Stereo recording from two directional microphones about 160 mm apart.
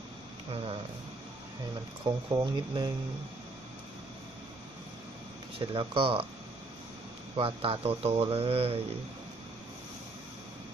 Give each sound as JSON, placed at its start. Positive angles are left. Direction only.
{"t": 2.0, "sound": "speech", "side_deg": -25}
{"t": 5.6, "sound": "speech", "side_deg": -35}
{"t": 7.3, "sound": "speech", "side_deg": -35}